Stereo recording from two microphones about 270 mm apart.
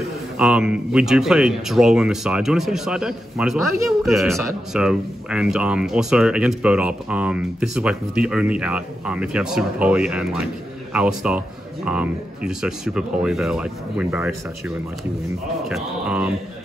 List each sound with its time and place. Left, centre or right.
0.4 s speech: centre
3.6 s speech: left
4.0 s speech: centre
15.6 s speech: centre